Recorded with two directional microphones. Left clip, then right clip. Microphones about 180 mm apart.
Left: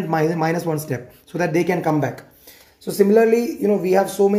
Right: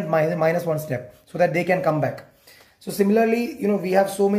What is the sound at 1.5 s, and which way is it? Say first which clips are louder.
Speech: left 1 dB; centre (ahead or behind).